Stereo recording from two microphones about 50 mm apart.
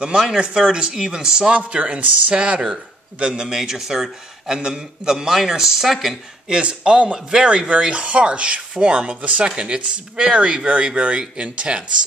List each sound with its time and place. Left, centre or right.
0.0 s speech: centre
6.5 s speech: centre